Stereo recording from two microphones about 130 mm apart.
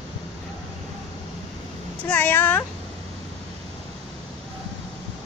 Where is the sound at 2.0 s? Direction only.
15° left (ahead or behind).